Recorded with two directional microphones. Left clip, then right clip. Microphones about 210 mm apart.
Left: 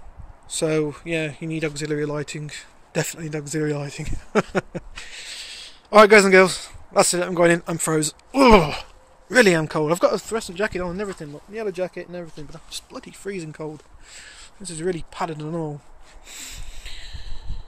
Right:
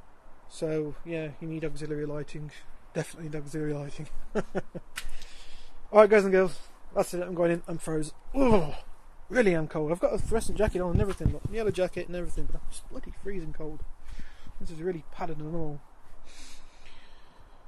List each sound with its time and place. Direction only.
0.5 s speech: 10° left (ahead or behind)
4.3 s speech: 20° left (ahead or behind)
9.3 s speech: 5° left (ahead or behind)
10.3 s speech: 25° right (ahead or behind)
12.4 s speech: 10° right (ahead or behind); by 15.7 s 5° left (ahead or behind)
16.3 s a sound: 5° left (ahead or behind)